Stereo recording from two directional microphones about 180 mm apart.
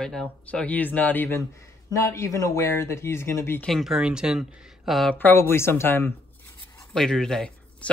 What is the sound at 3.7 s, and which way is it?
Speech, centre (ahead or behind).